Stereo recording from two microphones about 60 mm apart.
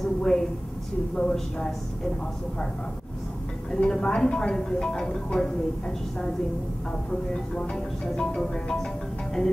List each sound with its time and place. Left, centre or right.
0.0 s a sound: centre
1.1 s a woman's voice: centre
3.7 s a woman's voice: centre
7.1 s a woman's voice: centre